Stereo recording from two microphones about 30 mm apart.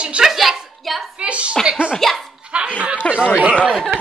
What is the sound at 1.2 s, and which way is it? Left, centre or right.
Speech, right.